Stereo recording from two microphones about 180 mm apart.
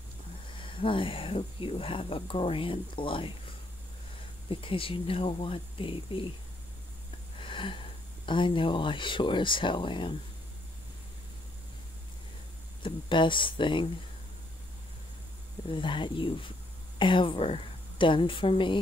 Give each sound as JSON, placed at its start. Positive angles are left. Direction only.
{"t": 0.6, "sound": "speech", "side_deg": 30}
{"t": 4.5, "sound": "speech", "side_deg": 30}
{"t": 7.3, "sound": "a sound", "side_deg": 30}
{"t": 8.3, "sound": "speech", "side_deg": 25}
{"t": 12.8, "sound": "speech", "side_deg": 25}
{"t": 15.7, "sound": "speech", "side_deg": 25}